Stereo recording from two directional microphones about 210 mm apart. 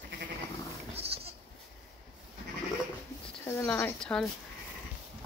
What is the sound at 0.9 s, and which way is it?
Goat, 30° right (ahead or behind).